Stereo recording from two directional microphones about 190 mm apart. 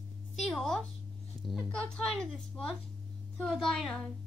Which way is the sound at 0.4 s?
Centre (ahead or behind).